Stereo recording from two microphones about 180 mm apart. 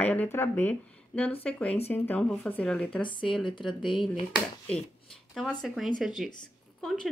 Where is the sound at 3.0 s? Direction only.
25° left (ahead or behind).